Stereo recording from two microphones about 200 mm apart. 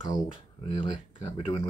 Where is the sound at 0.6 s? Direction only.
25° left (ahead or behind).